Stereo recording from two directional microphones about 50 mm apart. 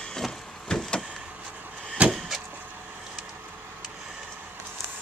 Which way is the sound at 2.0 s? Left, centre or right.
Right.